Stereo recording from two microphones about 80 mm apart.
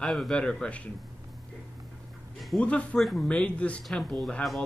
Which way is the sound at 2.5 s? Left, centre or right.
Centre.